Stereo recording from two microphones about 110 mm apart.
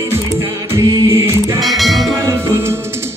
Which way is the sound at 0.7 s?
25° right (ahead or behind).